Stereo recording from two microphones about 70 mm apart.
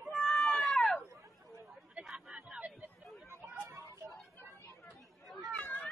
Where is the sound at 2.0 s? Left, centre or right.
Centre.